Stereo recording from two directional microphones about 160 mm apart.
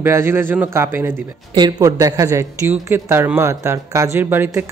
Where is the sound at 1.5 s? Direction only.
30° right (ahead or behind).